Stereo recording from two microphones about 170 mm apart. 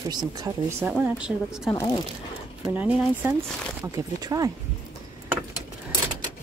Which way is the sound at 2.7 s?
10° right (ahead or behind).